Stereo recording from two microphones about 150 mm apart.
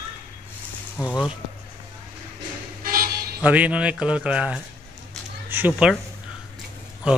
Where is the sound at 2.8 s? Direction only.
80° right.